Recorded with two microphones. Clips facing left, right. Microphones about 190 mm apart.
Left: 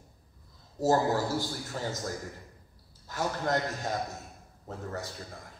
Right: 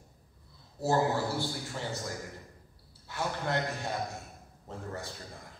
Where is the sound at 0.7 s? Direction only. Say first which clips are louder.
Left 2 dB; 40° left (ahead or behind).